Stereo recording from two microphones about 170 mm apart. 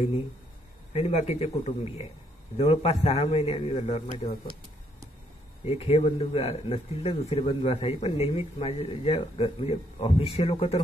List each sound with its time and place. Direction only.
0.9 s speech: 40° left (ahead or behind)
2.5 s speech: 35° left (ahead or behind)
5.7 s speech: 35° left (ahead or behind)